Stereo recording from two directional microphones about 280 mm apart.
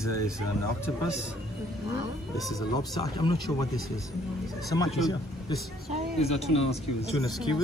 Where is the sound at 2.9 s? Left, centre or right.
Centre.